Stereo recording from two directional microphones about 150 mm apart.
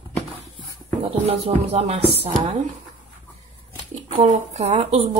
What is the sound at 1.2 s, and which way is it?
A woman's voice, 45° right (ahead or behind).